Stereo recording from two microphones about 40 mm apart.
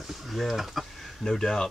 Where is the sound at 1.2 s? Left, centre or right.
Centre.